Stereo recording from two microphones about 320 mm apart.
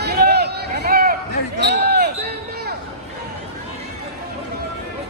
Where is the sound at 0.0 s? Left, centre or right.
Right.